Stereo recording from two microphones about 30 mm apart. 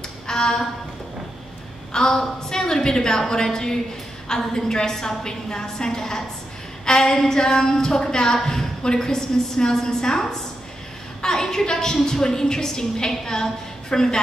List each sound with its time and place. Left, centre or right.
0.3 s speech: left
1.9 s a woman's voice: left